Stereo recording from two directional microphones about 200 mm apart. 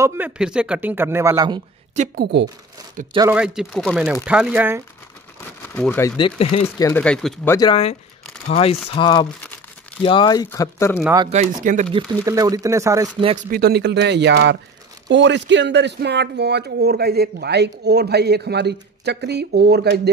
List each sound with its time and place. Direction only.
0.0 s speech: 5° right (ahead or behind)
2.1 s speech: 55° right (ahead or behind)
3.3 s speech: 5° right (ahead or behind)
5.4 s a sound: 10° left (ahead or behind)
6.1 s speech: 25° left (ahead or behind)
6.8 s speech: 10° left (ahead or behind)
7.5 s speech: 25° left (ahead or behind)
11.2 s speech: 35° right (ahead or behind)
12.3 s speech: 15° right (ahead or behind)
13.5 s speech: 50° right (ahead or behind)